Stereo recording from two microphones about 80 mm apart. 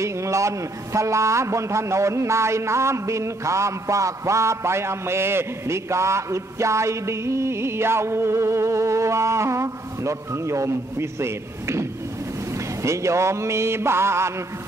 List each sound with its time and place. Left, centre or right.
0.0 s a man's voice: right
12.8 s a man's voice: right